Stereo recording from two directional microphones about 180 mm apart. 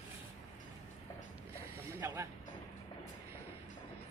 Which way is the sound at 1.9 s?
15° right (ahead or behind).